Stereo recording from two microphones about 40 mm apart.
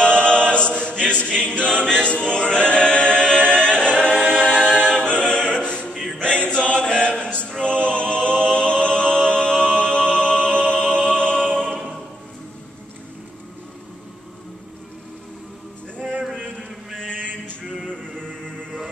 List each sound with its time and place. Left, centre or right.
0.0 s choir: left
2.7 s a capella: left
7.6 s music: left
8.8 s a capella: left
10.6 s music: centre
16.5 s a sound: centre
18.2 s music: centre